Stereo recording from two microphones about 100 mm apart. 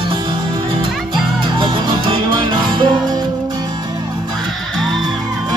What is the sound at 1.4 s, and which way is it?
Music, 55° right (ahead or behind).